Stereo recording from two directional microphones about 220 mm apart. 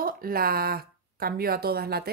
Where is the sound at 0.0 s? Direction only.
40° right (ahead or behind).